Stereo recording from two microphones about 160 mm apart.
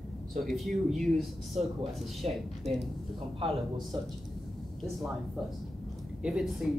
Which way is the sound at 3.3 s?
30° right (ahead or behind).